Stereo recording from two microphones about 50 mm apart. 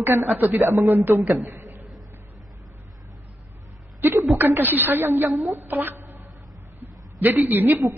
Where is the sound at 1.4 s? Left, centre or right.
Right.